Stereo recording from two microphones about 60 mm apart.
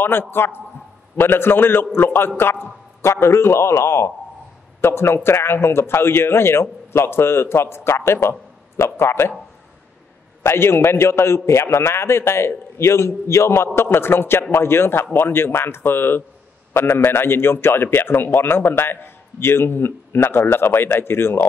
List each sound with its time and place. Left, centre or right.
0.0 s a man's voice: left
10.4 s a man's voice: left